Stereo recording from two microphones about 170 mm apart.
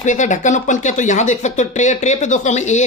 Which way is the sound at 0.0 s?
45° left (ahead or behind).